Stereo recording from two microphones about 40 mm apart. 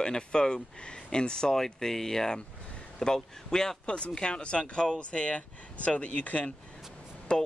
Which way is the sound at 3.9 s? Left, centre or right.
Left.